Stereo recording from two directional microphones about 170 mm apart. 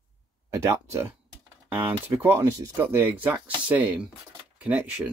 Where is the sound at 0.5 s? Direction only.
15° right (ahead or behind).